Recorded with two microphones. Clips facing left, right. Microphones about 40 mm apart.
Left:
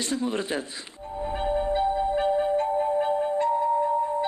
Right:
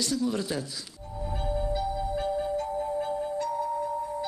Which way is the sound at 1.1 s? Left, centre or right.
Left.